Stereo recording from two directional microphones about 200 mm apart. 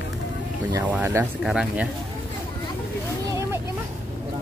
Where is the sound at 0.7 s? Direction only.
10° right (ahead or behind).